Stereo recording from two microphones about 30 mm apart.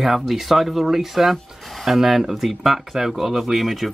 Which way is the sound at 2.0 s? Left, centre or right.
Centre.